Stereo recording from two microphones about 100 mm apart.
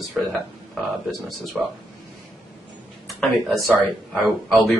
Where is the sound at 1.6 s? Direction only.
Centre (ahead or behind).